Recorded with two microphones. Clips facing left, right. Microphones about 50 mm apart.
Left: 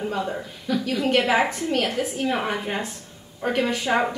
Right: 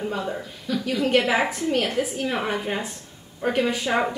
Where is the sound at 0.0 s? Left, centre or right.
Centre.